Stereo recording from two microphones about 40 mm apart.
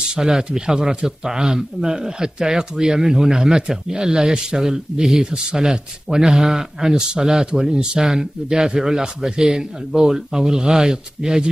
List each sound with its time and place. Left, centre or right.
0.0 s speech: centre